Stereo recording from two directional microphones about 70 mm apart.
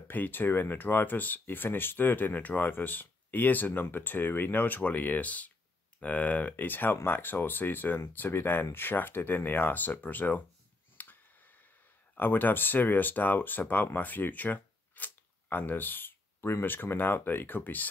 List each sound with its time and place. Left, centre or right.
0.1 s speech: left
11.0 s a sound: left
12.2 s speech: left